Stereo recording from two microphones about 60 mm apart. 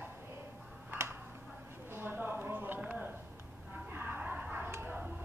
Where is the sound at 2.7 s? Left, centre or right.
Right.